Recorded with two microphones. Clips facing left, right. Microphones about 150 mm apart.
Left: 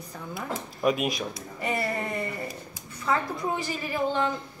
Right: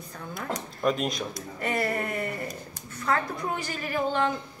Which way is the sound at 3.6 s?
5° left (ahead or behind).